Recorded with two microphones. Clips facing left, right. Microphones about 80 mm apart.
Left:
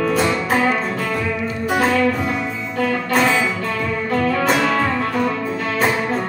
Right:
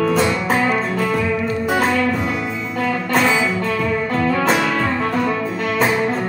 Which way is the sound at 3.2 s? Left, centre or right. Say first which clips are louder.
Right 1 dB; centre.